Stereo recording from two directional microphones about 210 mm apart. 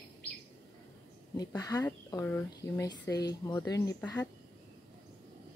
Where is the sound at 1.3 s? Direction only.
15° left (ahead or behind).